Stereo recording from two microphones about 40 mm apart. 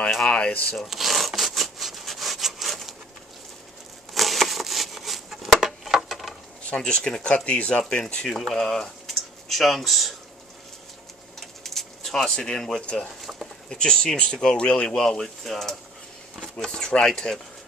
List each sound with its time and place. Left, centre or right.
0.2 s speech: left
0.7 s wood: centre
4.1 s a sound: centre
6.8 s speech: centre
7.2 s speech: left
7.9 s speech: left
8.4 s speech: centre
11.3 s a sound: centre
12.5 s speech: centre
13.7 s speech: centre